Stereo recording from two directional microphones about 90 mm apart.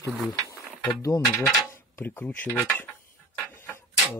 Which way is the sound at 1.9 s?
25° left (ahead or behind).